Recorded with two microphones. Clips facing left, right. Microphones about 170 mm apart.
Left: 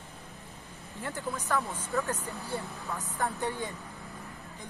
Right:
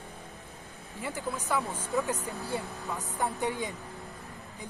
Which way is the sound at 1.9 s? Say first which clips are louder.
Right 2 dB; 15° right (ahead or behind).